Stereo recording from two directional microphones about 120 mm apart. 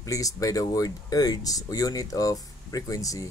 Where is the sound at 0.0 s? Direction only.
30° left (ahead or behind).